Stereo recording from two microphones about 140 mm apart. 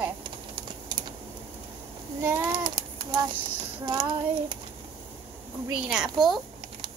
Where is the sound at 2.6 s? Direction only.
35° right (ahead or behind).